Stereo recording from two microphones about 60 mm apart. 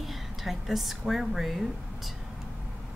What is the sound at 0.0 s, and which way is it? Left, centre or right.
A woman's voice, centre.